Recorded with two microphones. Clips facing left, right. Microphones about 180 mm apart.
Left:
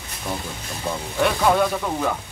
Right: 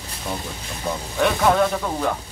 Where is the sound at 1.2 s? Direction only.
Centre (ahead or behind).